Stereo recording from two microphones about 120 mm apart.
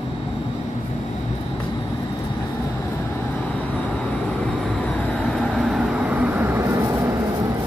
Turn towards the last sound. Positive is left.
turn(degrees=-25)  # may be behind; listen again after turning